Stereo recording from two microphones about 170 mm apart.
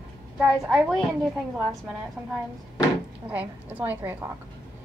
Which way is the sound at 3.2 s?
10° right (ahead or behind).